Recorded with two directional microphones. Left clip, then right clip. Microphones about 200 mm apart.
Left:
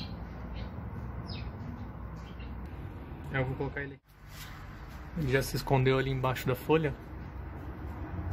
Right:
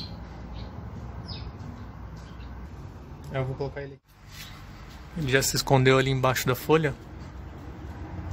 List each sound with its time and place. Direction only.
3.3 s speech: 30° right (ahead or behind)
5.2 s speech: 5° right (ahead or behind)